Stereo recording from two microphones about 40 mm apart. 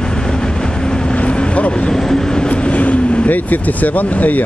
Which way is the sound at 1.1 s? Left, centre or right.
Left.